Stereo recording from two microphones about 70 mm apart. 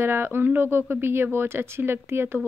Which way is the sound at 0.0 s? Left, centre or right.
Right.